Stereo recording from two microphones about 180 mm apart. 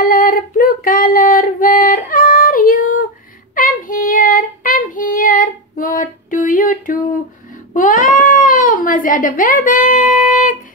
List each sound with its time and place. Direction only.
0.0 s female singing: 50° left (ahead or behind)
3.5 s child singing: 50° left (ahead or behind)
7.7 s cat: 45° left (ahead or behind)